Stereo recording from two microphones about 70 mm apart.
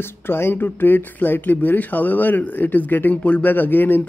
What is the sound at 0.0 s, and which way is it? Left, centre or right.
Speech, left.